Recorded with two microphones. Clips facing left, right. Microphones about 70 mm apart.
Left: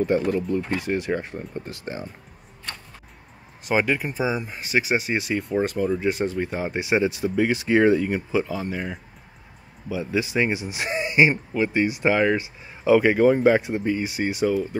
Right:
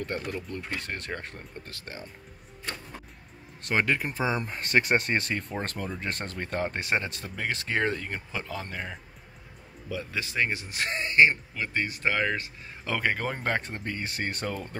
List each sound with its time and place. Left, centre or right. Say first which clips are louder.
0.0 s speech: left 12 dB; centre
3.6 s speech: left 4 dB; centre